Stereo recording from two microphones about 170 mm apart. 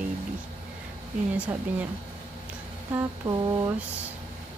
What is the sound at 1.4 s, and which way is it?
Speech, 10° right (ahead or behind).